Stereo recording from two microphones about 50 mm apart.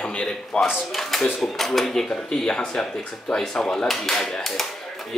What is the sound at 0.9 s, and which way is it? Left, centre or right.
Speech, centre.